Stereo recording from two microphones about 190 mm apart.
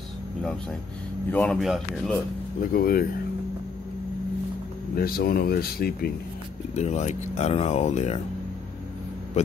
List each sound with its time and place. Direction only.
1.3 s speech: 5° left (ahead or behind)
2.6 s speech: 50° left (ahead or behind)
4.9 s speech: 55° left (ahead or behind)
6.7 s speech: 35° left (ahead or behind)